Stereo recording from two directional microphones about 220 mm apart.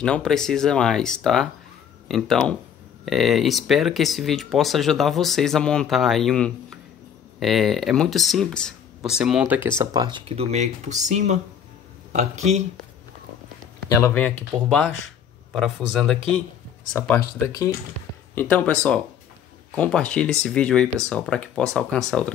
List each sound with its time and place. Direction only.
0.0 s speech: 5° left (ahead or behind); by 12.6 s 30° right (ahead or behind)
13.8 s speech: 10° left (ahead or behind)
17.2 s speech: 45° left (ahead or behind)
18.3 s speech: 10° left (ahead or behind)